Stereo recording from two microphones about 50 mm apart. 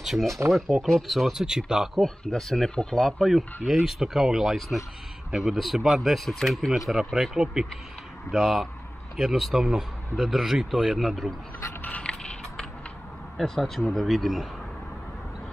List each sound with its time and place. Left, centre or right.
0.0 s speech: centre
1.4 s speech: centre
2.0 s speech: centre
3.0 s speech: centre
3.6 s speech: centre
6.2 s speech: centre
7.2 s speech: centre
12.0 s mechanisms: centre
13.4 s speech: centre